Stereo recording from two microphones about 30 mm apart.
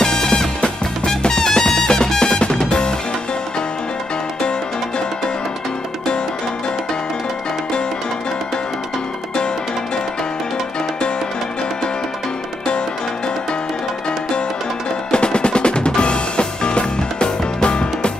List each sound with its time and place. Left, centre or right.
0.0 s music: left
15.0 s percussion: left
16.0 s music: left